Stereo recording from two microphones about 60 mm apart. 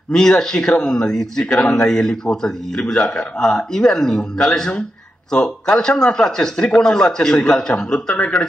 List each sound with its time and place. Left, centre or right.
0.1 s speech: centre
8.1 s speech: left